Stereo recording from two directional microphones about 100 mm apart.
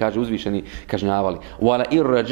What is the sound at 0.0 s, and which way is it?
Speech, 10° right (ahead or behind).